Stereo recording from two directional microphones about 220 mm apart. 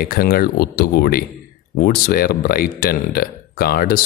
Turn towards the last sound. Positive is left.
turn(degrees=45)  # may be behind; listen again after turning